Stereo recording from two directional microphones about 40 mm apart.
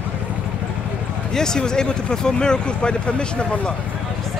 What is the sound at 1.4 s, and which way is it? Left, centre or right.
Speech, centre.